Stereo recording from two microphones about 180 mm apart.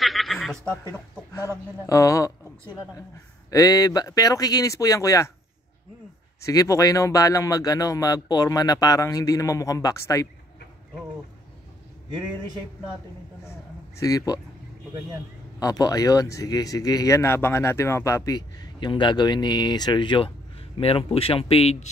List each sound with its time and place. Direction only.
0.0 s a sound: centre (ahead or behind)
0.9 s speech: 15° left (ahead or behind)
3.4 s speech: 20° left (ahead or behind)
6.4 s speech: 20° left (ahead or behind)
13.5 s speech: 15° left (ahead or behind)
15.6 s speech: 20° left (ahead or behind)